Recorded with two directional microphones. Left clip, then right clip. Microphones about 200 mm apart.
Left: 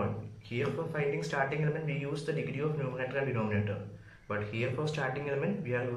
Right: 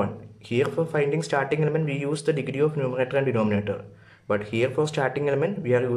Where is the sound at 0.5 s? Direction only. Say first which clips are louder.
Right 11 dB; 45° right (ahead or behind).